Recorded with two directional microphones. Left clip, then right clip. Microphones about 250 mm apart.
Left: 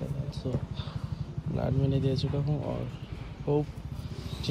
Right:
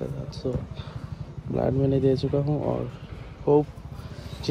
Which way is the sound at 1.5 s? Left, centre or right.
Centre.